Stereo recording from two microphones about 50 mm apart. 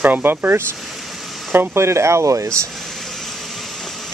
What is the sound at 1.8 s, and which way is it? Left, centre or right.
Speech, right.